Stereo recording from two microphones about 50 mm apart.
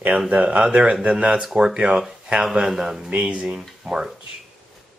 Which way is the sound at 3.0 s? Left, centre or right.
Right.